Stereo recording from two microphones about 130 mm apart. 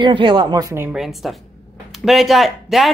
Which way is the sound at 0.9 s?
Centre (ahead or behind).